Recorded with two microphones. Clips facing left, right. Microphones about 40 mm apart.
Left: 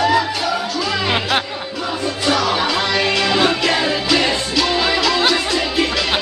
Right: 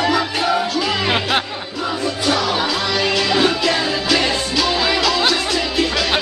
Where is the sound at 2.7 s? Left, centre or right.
Left.